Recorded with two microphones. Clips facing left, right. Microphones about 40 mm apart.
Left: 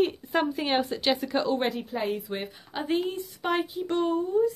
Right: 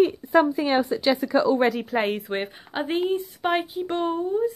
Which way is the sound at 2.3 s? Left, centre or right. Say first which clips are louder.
Right 5 dB; right.